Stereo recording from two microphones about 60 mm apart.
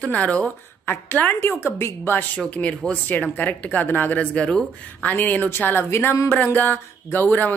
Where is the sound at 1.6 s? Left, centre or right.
Left.